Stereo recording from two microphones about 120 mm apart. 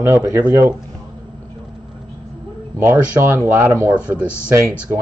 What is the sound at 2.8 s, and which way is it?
Speech, 20° right (ahead or behind).